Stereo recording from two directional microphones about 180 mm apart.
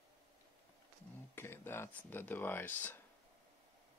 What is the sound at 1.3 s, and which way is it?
Speech, 15° left (ahead or behind).